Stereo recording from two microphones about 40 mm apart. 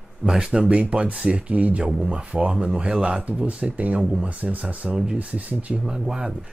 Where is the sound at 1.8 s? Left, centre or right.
Right.